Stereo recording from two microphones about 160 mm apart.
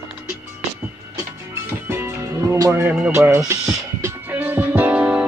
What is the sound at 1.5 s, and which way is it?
Music, 15° right (ahead or behind).